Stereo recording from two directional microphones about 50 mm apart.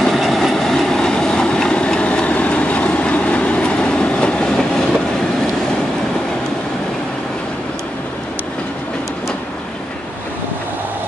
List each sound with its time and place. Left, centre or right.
0.0 s train: centre